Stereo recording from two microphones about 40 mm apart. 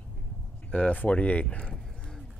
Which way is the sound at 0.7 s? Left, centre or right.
Left.